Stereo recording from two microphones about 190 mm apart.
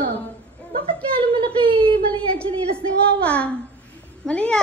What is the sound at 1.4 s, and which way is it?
Wail, 30° right (ahead or behind).